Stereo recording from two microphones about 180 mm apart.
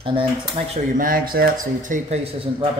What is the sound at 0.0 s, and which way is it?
Speech, 30° right (ahead or behind).